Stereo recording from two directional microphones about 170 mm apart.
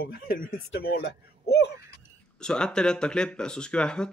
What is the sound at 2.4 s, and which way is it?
Speech, 5° left (ahead or behind).